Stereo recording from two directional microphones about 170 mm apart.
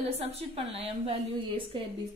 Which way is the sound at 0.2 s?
35° right (ahead or behind).